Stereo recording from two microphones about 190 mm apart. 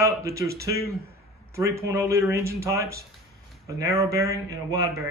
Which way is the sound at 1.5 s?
15° right (ahead or behind).